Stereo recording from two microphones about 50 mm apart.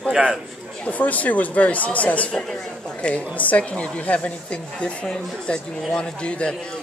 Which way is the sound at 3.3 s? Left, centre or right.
Left.